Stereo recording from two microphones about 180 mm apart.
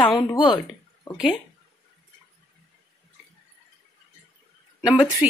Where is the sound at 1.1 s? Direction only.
25° left (ahead or behind).